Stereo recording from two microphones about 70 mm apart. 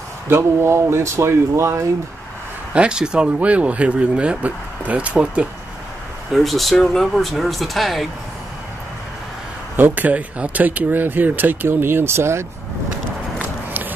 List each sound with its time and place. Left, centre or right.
0.3 s speech: right
2.7 s speech: centre
6.3 s speech: centre
9.8 s speech: right
13.4 s a sound: right